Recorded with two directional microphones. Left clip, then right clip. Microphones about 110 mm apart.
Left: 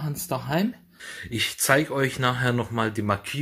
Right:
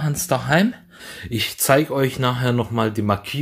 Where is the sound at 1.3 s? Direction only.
30° right (ahead or behind).